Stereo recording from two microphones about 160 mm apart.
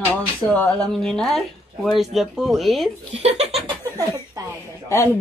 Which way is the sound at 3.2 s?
40° right (ahead or behind).